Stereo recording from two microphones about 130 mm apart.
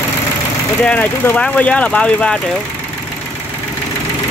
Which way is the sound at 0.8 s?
10° left (ahead or behind).